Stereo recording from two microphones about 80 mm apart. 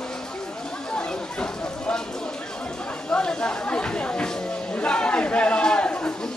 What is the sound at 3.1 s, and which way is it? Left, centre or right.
Chatter, centre.